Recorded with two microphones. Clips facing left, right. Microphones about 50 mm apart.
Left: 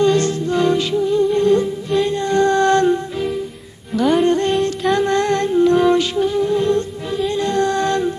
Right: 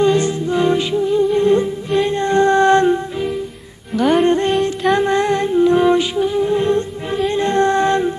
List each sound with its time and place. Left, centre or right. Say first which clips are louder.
0.0 s music: right 1 dB; centre
3.9 s music: right 1 dB; centre
4.2 s music: right 1 dB; right
4.9 s humming: even; centre
6.1 s music: right 1 dB; centre